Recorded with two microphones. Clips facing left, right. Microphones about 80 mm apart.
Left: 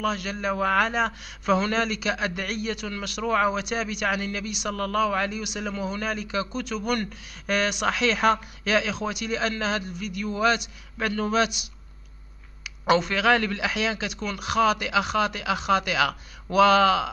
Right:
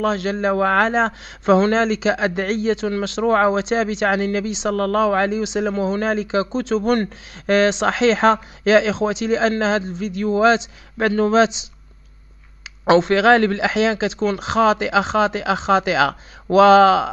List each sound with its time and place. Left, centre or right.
0.0 s a man's voice: right
12.8 s a man's voice: right